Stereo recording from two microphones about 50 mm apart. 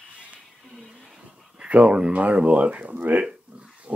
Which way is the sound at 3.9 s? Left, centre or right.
Right.